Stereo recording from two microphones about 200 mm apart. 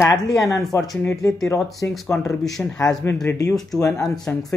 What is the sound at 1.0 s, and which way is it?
Speech, centre (ahead or behind).